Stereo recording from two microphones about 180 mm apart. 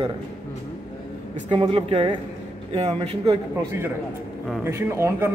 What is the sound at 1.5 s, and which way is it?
A man's voice, 30° right (ahead or behind).